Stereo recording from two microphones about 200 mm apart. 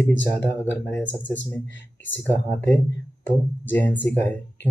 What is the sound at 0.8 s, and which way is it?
Speech, 5° left (ahead or behind).